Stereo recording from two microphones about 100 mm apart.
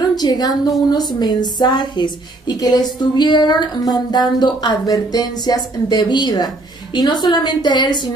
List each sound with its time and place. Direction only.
0.2 s a woman's voice: 40° left (ahead or behind)